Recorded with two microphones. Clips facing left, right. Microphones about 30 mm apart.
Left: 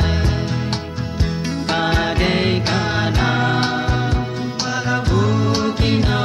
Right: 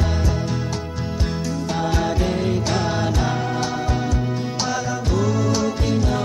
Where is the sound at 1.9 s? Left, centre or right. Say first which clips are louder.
Left 3 dB; left.